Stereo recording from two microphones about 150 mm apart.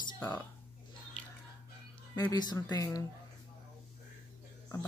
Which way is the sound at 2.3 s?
25° left (ahead or behind).